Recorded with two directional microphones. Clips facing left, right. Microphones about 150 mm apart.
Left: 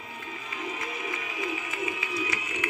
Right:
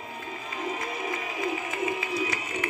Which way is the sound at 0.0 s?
40° right (ahead or behind).